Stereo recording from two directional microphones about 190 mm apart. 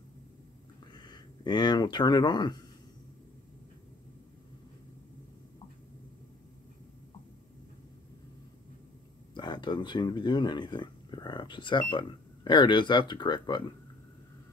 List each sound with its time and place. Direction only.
0.9 s speech: 20° left (ahead or behind)
9.3 s speech: 25° left (ahead or behind)